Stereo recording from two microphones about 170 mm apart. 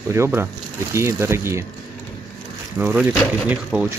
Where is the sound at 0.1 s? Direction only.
15° right (ahead or behind).